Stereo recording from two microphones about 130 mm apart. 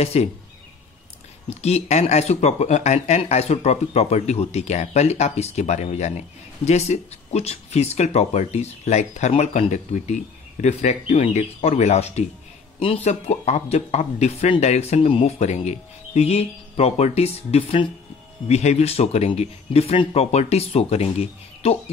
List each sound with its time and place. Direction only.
0.0 s speech: 50° left (ahead or behind)
1.5 s speech: 55° left (ahead or behind)